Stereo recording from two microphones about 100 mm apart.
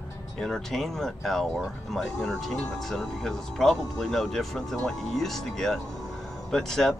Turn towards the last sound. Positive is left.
turn(degrees=5)  # may be behind; listen again after turning